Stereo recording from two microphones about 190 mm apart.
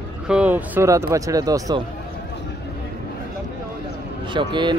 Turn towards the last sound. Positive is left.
turn(degrees=-25)  # may be behind; listen again after turning